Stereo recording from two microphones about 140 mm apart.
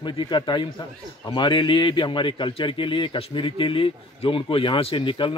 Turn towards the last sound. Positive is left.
turn(degrees=35)  # may be behind; listen again after turning